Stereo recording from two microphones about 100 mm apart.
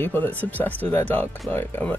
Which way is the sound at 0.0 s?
20° left (ahead or behind).